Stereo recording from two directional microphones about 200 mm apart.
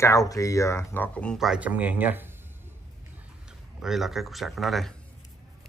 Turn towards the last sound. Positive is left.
turn(degrees=0)  # may be behind; listen again after turning